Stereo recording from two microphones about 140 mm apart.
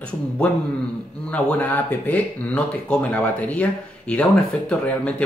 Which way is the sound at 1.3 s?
10° left (ahead or behind).